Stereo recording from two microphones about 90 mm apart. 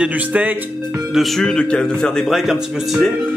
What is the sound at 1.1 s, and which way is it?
A man's voice, 5° left (ahead or behind).